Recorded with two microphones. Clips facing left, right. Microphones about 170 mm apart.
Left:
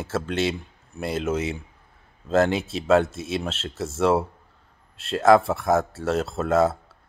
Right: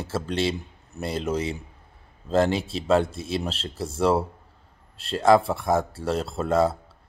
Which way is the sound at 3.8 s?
Centre (ahead or behind).